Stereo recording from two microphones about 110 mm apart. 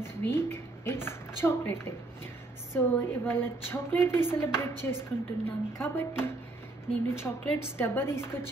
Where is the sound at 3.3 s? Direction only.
20° left (ahead or behind).